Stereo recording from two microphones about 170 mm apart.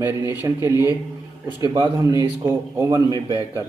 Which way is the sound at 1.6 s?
25° right (ahead or behind).